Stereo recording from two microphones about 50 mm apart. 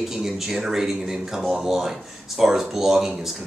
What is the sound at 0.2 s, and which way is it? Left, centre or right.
Speech, centre.